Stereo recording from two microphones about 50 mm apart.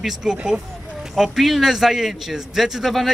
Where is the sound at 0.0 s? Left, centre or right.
Centre.